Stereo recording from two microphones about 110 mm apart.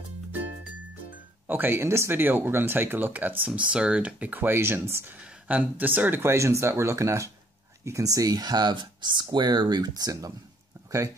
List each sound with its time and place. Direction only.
1.5 s speech: 20° right (ahead or behind); by 10.3 s 35° right (ahead or behind)